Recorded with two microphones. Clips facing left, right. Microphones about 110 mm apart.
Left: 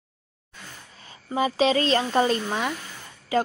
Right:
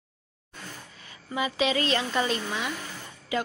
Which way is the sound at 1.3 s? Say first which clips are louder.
Left 5 dB; 35° left (ahead or behind).